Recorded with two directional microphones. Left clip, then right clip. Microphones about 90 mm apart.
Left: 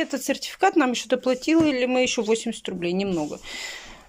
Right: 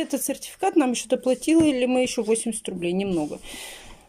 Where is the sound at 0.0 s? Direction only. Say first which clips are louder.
Left 2 dB; 30° right (ahead or behind).